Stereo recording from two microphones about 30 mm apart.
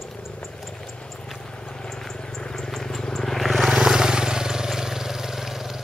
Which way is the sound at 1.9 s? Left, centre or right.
Centre.